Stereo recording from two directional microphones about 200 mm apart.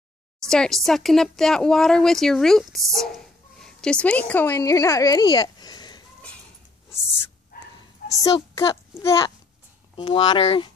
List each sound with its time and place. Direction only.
0.5 s speech: centre (ahead or behind); by 6.0 s 20° left (ahead or behind)
8.1 s a child's voice: 15° left (ahead or behind)